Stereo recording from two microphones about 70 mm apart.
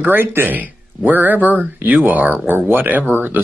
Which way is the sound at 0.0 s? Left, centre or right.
Right.